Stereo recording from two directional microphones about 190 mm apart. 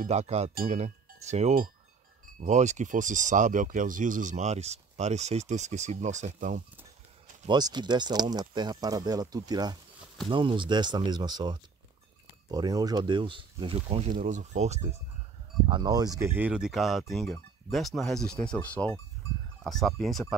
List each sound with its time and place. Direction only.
0.0 s speech: 35° right (ahead or behind)
7.4 s speech: 20° right (ahead or behind)
15.7 s speech: 20° right (ahead or behind); by 20.3 s centre (ahead or behind)